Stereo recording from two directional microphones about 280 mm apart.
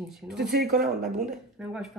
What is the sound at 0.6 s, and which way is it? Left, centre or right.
Speech, right.